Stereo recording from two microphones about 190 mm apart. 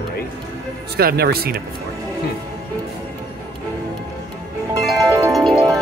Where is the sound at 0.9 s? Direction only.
55° right (ahead or behind).